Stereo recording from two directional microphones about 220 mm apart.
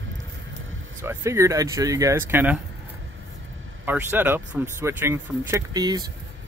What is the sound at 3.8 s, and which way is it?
Speech, 10° right (ahead or behind).